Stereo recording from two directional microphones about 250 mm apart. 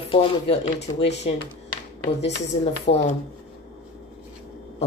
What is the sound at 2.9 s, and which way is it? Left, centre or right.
Speech, left.